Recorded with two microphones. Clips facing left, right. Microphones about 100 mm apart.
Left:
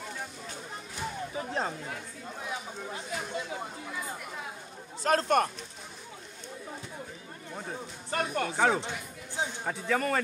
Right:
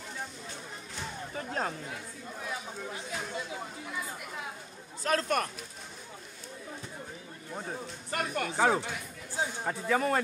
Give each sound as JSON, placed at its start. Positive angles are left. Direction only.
{"t": 1.3, "sound": "speech", "side_deg": 15}
{"t": 5.0, "sound": "speech", "side_deg": 30}
{"t": 8.1, "sound": "speech", "side_deg": 30}
{"t": 8.5, "sound": "speech", "side_deg": -15}
{"t": 8.8, "sound": "speech", "side_deg": 20}
{"t": 9.7, "sound": "a man's voice", "side_deg": -5}